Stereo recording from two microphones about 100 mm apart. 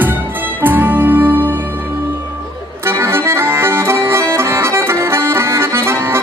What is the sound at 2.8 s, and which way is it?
Accordion, 25° right (ahead or behind).